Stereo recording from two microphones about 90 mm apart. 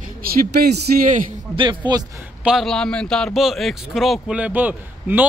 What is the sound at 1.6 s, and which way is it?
Speech, 60° right (ahead or behind).